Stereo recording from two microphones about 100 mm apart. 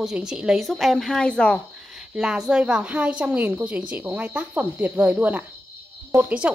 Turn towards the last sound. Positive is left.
turn(degrees=-15)  # may be behind; listen again after turning